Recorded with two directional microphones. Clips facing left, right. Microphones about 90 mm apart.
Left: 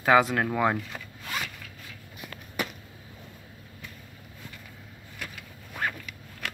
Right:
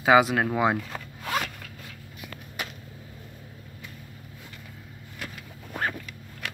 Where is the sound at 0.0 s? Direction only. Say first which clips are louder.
Right 2 dB; 15° right (ahead or behind).